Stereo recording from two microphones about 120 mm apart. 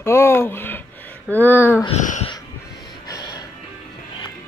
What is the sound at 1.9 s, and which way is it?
Speech, 75° left (ahead or behind).